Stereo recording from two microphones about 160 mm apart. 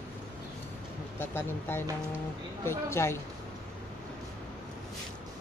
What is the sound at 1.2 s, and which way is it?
Speech, 15° left (ahead or behind).